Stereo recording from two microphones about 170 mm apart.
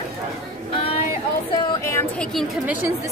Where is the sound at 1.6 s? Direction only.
25° left (ahead or behind).